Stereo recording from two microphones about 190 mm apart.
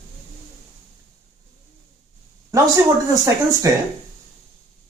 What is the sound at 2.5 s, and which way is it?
Speech, 15° right (ahead or behind).